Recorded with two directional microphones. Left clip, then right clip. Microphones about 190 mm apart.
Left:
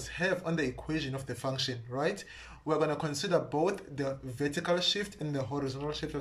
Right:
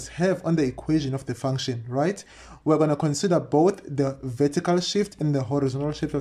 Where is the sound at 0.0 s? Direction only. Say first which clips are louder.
Right 7 dB; 35° right (ahead or behind).